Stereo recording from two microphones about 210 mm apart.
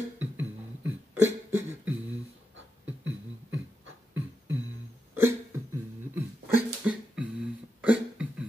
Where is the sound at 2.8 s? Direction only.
65° right (ahead or behind).